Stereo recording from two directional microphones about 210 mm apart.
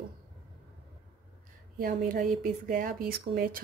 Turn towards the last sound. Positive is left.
turn(degrees=-45)  # may be behind; listen again after turning